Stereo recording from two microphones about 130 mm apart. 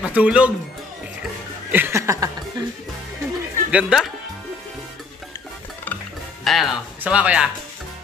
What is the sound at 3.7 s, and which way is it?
Speech, centre (ahead or behind).